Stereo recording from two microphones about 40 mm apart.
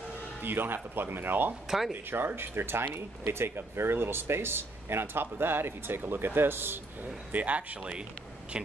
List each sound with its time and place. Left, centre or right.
0.4 s speech: right
3.3 s speech: right
7.0 s speech: right
7.8 s a man's voice: right